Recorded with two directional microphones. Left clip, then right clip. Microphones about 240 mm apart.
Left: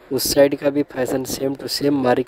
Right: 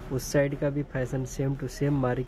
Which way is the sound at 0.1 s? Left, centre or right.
Left.